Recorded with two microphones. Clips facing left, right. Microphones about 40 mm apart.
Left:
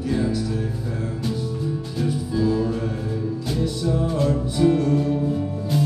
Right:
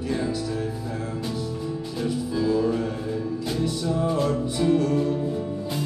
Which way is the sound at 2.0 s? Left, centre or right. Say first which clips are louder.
Left 2 dB; centre.